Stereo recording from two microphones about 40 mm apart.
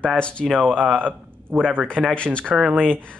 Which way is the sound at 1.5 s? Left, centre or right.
Centre.